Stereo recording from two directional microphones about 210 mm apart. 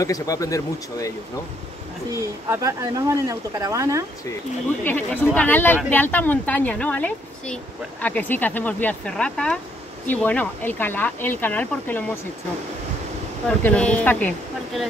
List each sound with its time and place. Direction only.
0.0 s a woman's voice: 15° left (ahead or behind)
2.1 s speech: 15° right (ahead or behind)
4.8 s a woman's voice: 10° left (ahead or behind)
13.7 s speech: 5° left (ahead or behind)